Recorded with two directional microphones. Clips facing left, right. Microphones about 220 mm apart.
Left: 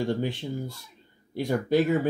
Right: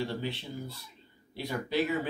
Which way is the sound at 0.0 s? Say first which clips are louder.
Left 7 dB; 45° left (ahead or behind).